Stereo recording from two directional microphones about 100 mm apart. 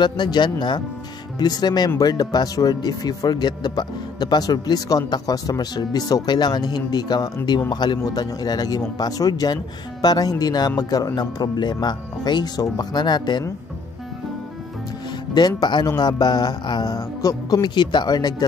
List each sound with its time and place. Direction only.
0.0 s speech: 50° left (ahead or behind)
15.3 s speech: 45° left (ahead or behind)
17.2 s speech: 35° left (ahead or behind)